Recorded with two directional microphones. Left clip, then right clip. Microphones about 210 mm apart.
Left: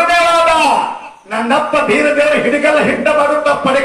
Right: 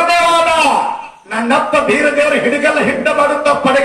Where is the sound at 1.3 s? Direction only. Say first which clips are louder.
Even; 55° right (ahead or behind).